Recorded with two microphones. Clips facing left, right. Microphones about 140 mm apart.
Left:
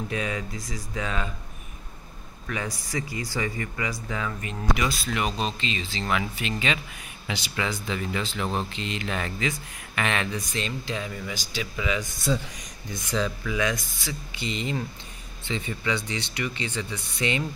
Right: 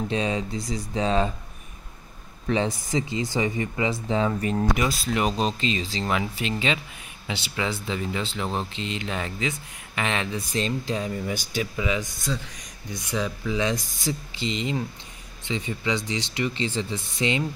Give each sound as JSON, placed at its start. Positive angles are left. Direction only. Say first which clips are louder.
{"t": 0.1, "sound": "speech", "louder": "right 4 dB", "side_deg": -25}
{"t": 2.4, "sound": "speech", "louder": "right 8 dB", "side_deg": -25}
{"t": 10.5, "sound": "speech", "louder": "right 4 dB", "side_deg": -35}
{"t": 11.3, "sound": "speech", "louder": "right 5 dB", "side_deg": -60}
{"t": 11.6, "sound": "speech", "louder": "even", "side_deg": -30}
{"t": 13.1, "sound": "speech", "louder": "left 1 dB", "side_deg": -15}
{"t": 13.5, "sound": "speech", "louder": "right 2 dB", "side_deg": -25}